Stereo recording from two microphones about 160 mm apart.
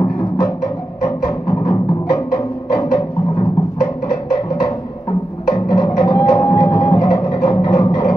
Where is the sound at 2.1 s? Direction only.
20° left (ahead or behind).